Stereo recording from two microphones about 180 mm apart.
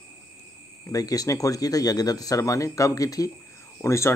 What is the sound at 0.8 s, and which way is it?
Speech, 20° left (ahead or behind).